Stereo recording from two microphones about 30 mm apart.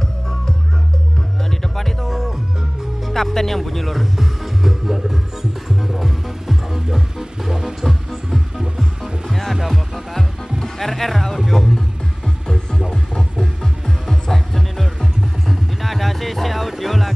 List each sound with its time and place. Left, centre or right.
0.0 s music: left
2.0 s music: centre
3.1 s speech: centre
5.8 s music: centre
7.2 s music: right
7.8 s music: centre
9.3 s music: centre
9.6 s music: centre
10.1 s music: centre
11.5 s speech: centre
12.9 s music: centre